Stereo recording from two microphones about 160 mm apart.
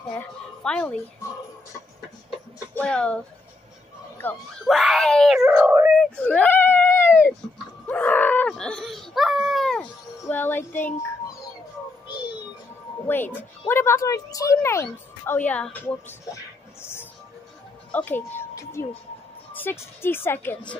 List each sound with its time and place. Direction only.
0.7 s a woman's voice: 5° left (ahead or behind)
2.7 s speech: 5° left (ahead or behind)
4.2 s speech: 5° left (ahead or behind)
5.5 s speech: 15° right (ahead or behind)
5.9 s a sound: 5° left (ahead or behind)
10.3 s a woman's voice: 10° left (ahead or behind)
13.0 s a woman's voice: 15° left (ahead or behind)
16.8 s music: 15° left (ahead or behind)
17.9 s a woman's voice: 10° left (ahead or behind)